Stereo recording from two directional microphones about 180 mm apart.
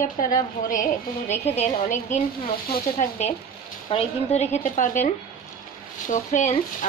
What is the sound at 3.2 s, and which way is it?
A woman's voice, 40° left (ahead or behind).